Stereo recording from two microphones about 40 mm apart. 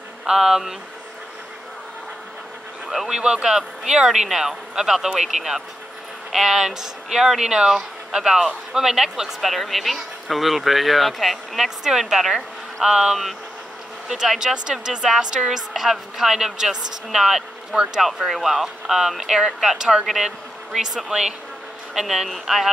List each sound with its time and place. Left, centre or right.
0.3 s speech: centre
3.1 s speech: right
9.4 s speech: centre
12.8 s speech: centre
14.0 s speech: centre
14.4 s speech: centre